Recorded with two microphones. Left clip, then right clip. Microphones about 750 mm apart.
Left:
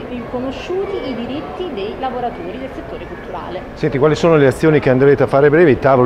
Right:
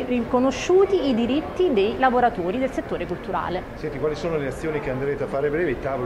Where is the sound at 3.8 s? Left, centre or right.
Left.